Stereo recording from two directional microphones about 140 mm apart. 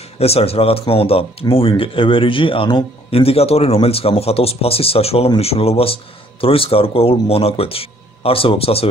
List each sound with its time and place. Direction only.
0.2 s speech: 45° left (ahead or behind)